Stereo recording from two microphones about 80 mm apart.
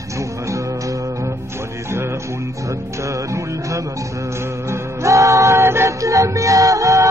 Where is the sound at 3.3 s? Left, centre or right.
Right.